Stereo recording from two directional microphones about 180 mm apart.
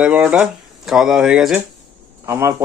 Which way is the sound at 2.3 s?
15° right (ahead or behind).